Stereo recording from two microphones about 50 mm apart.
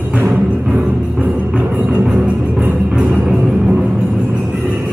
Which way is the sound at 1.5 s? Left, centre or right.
Right.